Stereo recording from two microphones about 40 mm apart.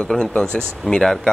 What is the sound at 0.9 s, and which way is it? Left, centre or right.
Speech, left.